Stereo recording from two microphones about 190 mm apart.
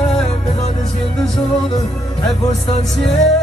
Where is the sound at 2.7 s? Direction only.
35° left (ahead or behind).